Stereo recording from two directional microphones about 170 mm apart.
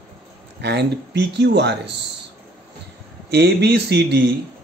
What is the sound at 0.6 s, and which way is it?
Speech, 85° right.